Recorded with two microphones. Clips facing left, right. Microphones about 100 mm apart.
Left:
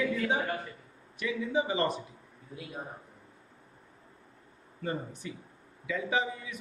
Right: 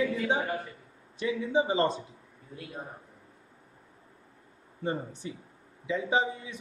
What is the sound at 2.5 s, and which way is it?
Speech, centre (ahead or behind).